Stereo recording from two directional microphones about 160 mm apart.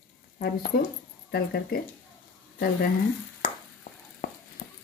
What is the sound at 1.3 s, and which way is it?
Speech, 80° left.